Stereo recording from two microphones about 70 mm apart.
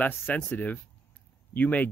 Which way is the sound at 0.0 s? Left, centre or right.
Left.